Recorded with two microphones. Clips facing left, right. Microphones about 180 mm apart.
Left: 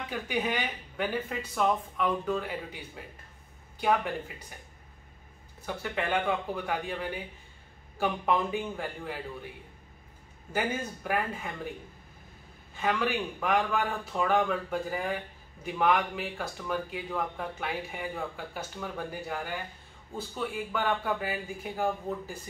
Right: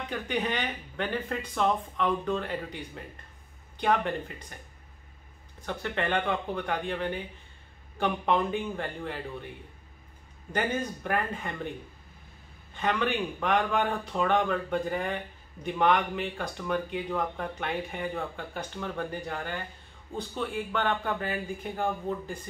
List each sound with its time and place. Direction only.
0.1 s speech: 5° left (ahead or behind)
3.8 s speech: 5° left (ahead or behind)
5.7 s speech: 5° left (ahead or behind)
10.5 s speech: 5° left (ahead or behind)
12.7 s speech: 5° left (ahead or behind)